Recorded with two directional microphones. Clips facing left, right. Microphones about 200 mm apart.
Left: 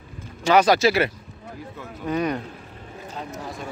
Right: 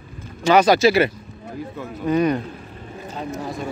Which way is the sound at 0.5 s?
10° left (ahead or behind).